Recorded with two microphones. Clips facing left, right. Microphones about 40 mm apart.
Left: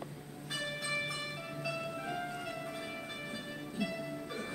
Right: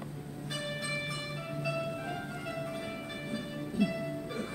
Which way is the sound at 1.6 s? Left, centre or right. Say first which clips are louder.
Right 4 dB; centre.